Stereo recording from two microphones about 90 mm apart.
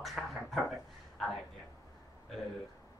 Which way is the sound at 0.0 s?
Centre (ahead or behind).